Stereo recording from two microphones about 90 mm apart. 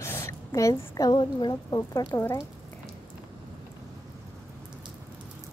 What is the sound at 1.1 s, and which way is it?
Speech, 55° left (ahead or behind).